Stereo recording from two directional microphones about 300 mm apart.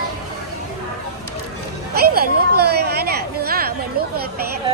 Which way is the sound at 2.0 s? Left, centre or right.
Right.